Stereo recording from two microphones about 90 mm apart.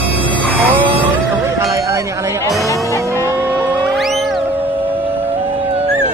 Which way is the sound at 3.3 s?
25° right (ahead or behind).